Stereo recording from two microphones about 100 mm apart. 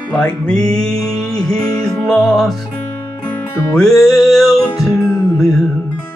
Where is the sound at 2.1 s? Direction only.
5° left (ahead or behind).